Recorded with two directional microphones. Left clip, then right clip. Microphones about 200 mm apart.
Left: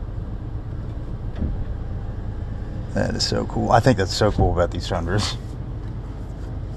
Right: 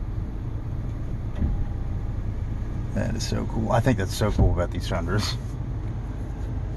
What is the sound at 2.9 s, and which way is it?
Speech, 35° left (ahead or behind).